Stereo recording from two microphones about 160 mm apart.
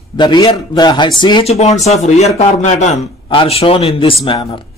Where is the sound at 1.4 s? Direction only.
45° left (ahead or behind).